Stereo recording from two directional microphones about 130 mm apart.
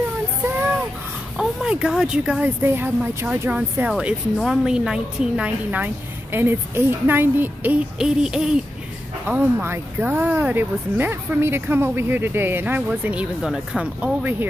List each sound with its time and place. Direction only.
1.4 s a woman's voice: 5° right (ahead or behind)